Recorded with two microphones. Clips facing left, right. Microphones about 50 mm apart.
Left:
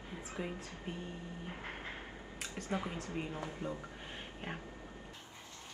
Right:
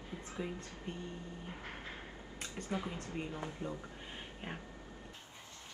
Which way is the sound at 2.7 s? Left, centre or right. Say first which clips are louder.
Left 1 dB; left.